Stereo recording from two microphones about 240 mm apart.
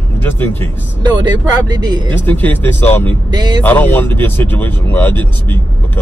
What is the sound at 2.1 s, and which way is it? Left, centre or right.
Speech, centre.